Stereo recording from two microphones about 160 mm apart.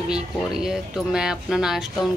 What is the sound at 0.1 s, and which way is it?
Speech, 5° right (ahead or behind).